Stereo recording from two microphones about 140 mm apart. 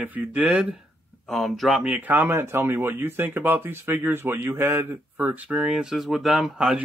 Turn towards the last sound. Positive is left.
turn(degrees=-5)  # may be behind; listen again after turning